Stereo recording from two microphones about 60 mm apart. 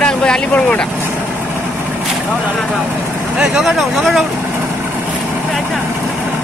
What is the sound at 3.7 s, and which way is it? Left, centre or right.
Speech, centre.